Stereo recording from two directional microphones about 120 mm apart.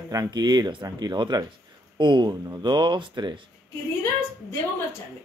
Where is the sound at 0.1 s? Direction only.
35° right (ahead or behind).